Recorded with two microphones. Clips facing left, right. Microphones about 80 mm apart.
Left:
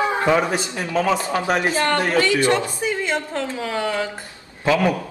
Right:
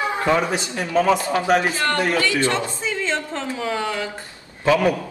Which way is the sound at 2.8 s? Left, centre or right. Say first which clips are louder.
Left 2 dB; centre.